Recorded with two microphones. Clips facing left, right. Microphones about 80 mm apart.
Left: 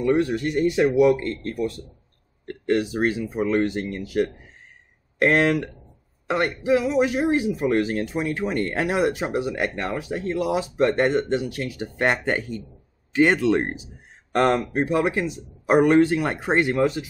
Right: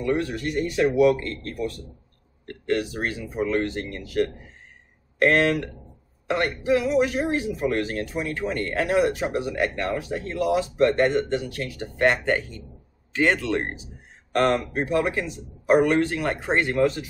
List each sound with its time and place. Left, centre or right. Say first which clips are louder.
0.0 s a man's voice: left 4 dB; left